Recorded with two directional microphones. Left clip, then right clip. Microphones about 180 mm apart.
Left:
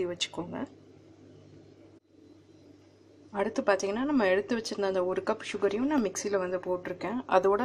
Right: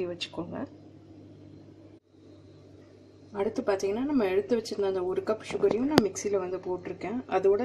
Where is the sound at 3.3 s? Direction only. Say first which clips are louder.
Left 1 dB; 20° left (ahead or behind).